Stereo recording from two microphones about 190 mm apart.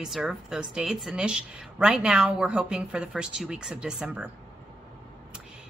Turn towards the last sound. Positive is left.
turn(degrees=-5)  # may be behind; listen again after turning